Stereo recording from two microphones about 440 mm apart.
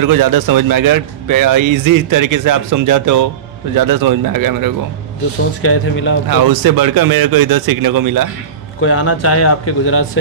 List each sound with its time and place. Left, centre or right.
0.0 s a man's voice: right
5.6 s speech: left
6.2 s a man's voice: right
8.8 s speech: left